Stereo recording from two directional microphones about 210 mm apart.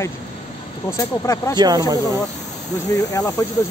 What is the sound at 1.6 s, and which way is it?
Speech, 20° right (ahead or behind).